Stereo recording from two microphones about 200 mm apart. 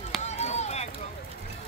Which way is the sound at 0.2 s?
35° left (ahead or behind).